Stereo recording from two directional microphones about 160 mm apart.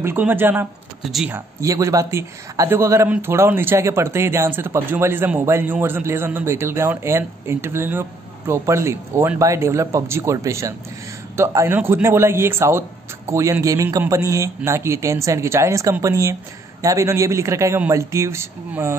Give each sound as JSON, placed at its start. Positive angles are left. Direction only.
{"t": 0.0, "sound": "a man's voice", "side_deg": -15}
{"t": 1.0, "sound": "speech", "side_deg": 0}
{"t": 1.3, "sound": "a man's voice", "side_deg": -20}